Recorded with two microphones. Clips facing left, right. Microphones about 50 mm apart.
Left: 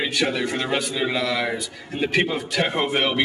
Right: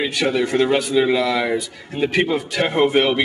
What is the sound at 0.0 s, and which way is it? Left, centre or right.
Speech, centre.